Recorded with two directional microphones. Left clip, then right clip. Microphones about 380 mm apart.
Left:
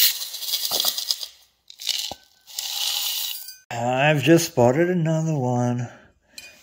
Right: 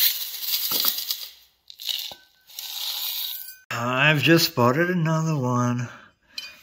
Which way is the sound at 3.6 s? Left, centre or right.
Centre.